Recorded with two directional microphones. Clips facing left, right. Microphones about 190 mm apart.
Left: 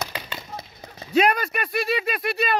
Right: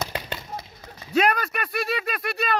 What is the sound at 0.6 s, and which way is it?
Horse, 25° left (ahead or behind).